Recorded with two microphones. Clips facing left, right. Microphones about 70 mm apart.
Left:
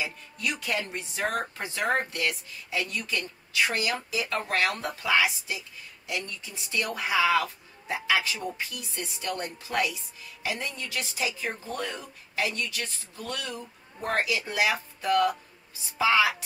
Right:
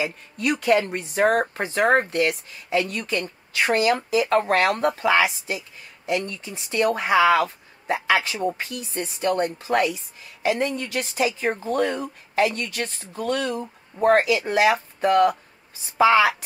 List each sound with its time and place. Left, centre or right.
0.0 s a woman's voice: right